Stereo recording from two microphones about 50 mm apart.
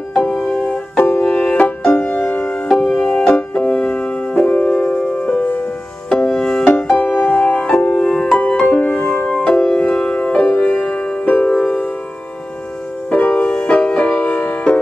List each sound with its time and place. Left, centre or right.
0.3 s music: centre
0.9 s music: left
1.2 s music: left
2.7 s music: centre
4.5 s music: left
6.0 s music: centre
13.1 s music: left